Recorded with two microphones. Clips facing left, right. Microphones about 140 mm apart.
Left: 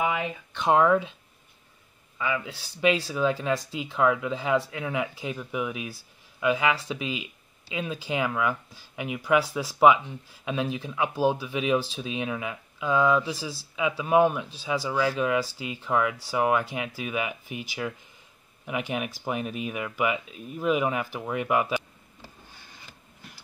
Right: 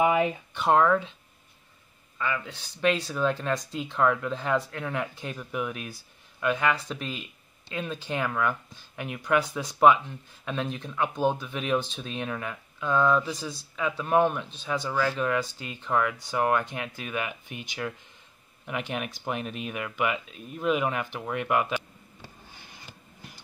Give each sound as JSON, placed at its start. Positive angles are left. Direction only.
{"t": 0.0, "sound": "a sound", "side_deg": -30}
{"t": 0.7, "sound": "speech", "side_deg": 5}
{"t": 2.1, "sound": "speech", "side_deg": 10}